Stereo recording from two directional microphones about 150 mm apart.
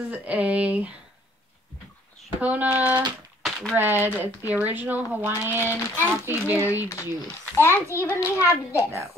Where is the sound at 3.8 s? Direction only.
15° right (ahead or behind).